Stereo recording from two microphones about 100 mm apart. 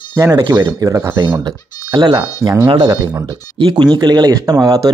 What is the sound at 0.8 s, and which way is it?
Speech, 30° right (ahead or behind).